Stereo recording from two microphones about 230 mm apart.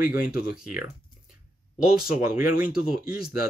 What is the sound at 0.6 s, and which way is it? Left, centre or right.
Speech, centre.